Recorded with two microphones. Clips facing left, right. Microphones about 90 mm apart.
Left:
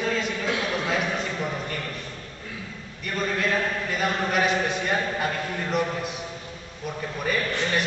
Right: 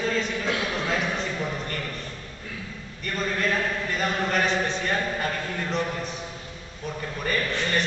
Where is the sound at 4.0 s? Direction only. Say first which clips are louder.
Left 1 dB; 5° left (ahead or behind).